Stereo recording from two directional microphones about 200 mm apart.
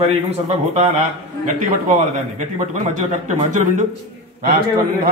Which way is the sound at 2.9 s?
40° right (ahead or behind).